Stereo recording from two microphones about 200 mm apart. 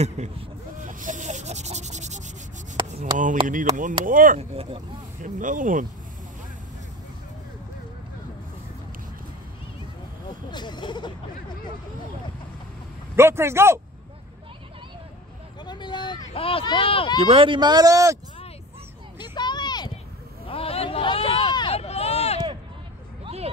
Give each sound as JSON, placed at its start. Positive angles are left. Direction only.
{"t": 0.2, "sound": "speech", "side_deg": -35}
{"t": 0.7, "sound": "a sound", "side_deg": -40}
{"t": 3.4, "sound": "speech", "side_deg": -40}
{"t": 5.2, "sound": "speech", "side_deg": -40}
{"t": 10.5, "sound": "speech", "side_deg": 20}
{"t": 13.1, "sound": "a man's voice", "side_deg": -10}
{"t": 15.6, "sound": "speech", "side_deg": 20}
{"t": 17.2, "sound": "speech", "side_deg": -25}
{"t": 19.1, "sound": "vehicle", "side_deg": 20}
{"t": 20.4, "sound": "hubbub", "side_deg": 30}
{"t": 23.2, "sound": "a sound", "side_deg": -30}